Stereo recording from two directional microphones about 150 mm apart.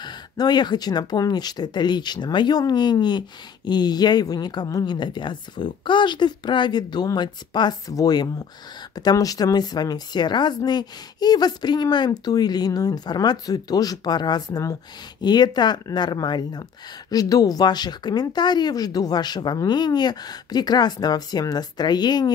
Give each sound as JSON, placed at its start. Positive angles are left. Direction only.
{"t": 0.0, "sound": "speech", "side_deg": 30}